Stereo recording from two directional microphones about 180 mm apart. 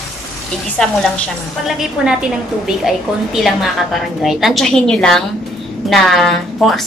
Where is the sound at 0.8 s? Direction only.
Centre (ahead or behind).